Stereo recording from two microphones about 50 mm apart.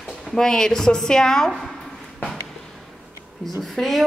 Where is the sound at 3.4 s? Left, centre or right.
Centre.